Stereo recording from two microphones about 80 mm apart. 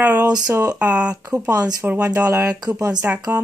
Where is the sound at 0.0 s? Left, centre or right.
Right.